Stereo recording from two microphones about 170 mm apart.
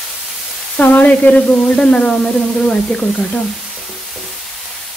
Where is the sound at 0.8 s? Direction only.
10° left (ahead or behind).